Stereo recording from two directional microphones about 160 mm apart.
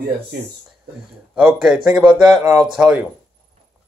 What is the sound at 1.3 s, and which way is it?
Speech, 5° right (ahead or behind).